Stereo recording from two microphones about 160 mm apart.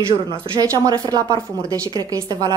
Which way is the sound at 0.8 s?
25° right (ahead or behind).